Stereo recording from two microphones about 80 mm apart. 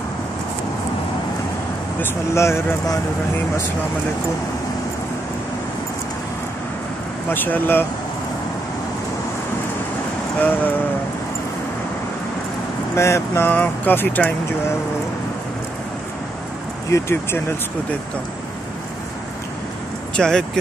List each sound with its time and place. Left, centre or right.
2.0 s speech: left
7.2 s speech: left
10.4 s speech: left
12.9 s speech: left
13.5 s speech: left
16.9 s speech: left
20.2 s speech: centre